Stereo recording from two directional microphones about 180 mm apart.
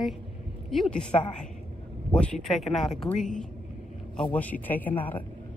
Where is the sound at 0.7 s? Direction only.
5° left (ahead or behind).